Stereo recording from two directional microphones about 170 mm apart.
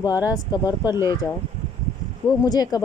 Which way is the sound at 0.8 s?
15° right (ahead or behind).